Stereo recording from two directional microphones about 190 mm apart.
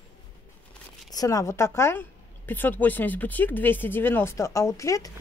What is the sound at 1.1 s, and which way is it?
Speech, 20° left (ahead or behind).